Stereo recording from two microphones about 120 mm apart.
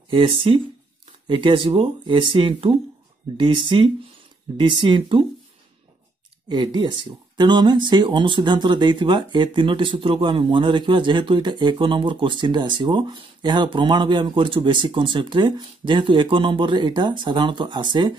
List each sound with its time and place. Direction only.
0.1 s speech: 45° right (ahead or behind)
6.5 s speech: 40° right (ahead or behind)